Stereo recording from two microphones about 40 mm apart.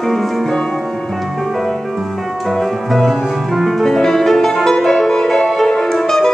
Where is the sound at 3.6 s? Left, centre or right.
Centre.